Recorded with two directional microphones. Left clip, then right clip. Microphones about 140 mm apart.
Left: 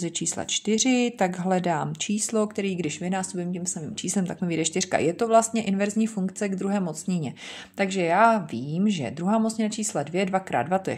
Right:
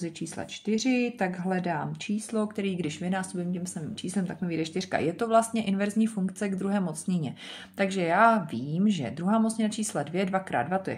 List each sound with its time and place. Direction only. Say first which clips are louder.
0.0 s speech: left 6 dB; 40° left (ahead or behind); by 3.7 s 20° left (ahead or behind)
4.0 s a woman's voice: left 5 dB; 35° left (ahead or behind)